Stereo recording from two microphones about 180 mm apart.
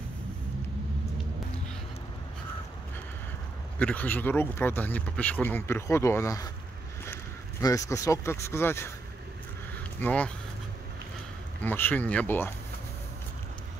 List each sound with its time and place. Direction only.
3.8 s speech: 10° left (ahead or behind)
7.6 s speech: 20° left (ahead or behind)
9.9 s speech: 10° left (ahead or behind)
11.6 s speech: 10° left (ahead or behind)